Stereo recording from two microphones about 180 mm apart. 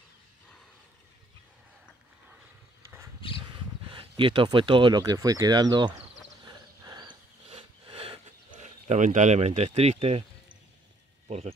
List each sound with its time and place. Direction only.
3.4 s speech: 30° right (ahead or behind)
6.4 s a sound: 25° right (ahead or behind)
11.2 s speech: 35° right (ahead or behind)